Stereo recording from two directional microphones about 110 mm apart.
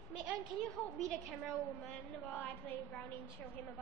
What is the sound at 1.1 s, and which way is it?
A woman's voice, 5° left (ahead or behind).